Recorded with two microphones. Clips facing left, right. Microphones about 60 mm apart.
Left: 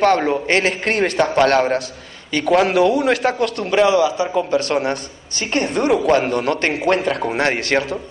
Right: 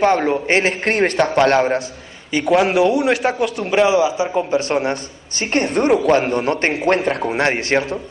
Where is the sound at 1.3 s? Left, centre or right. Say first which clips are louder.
Even; centre.